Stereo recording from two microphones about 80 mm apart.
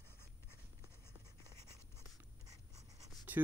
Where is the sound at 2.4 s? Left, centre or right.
Right.